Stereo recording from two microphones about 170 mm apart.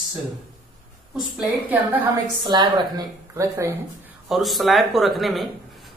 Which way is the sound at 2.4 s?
25° right (ahead or behind).